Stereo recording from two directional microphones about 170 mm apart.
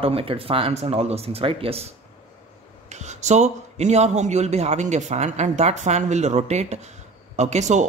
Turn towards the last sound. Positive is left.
turn(degrees=-45)  # may be behind; listen again after turning